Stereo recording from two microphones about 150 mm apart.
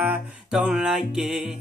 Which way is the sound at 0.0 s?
10° right (ahead or behind).